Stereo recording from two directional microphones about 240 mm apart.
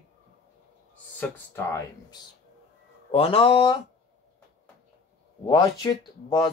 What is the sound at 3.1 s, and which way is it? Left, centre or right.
Speech, left.